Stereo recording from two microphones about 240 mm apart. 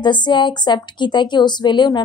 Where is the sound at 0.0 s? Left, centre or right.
Centre.